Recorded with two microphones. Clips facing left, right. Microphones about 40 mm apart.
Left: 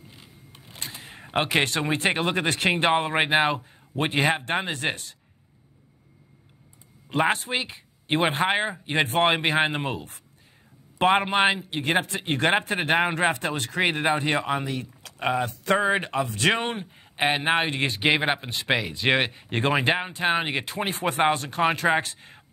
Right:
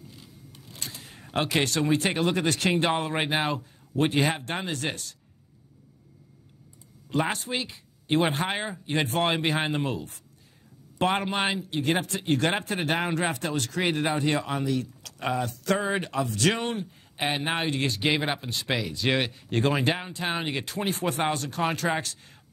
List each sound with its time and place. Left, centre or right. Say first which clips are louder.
0.1 s speech: even; left
7.1 s speech: left 4 dB; left